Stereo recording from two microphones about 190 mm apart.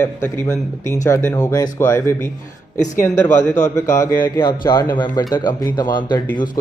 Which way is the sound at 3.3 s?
40° left (ahead or behind).